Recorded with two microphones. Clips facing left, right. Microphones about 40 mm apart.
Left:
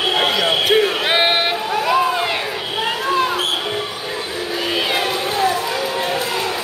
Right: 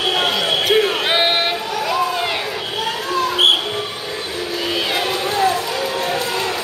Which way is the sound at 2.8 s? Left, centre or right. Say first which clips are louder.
Left 3 dB; left.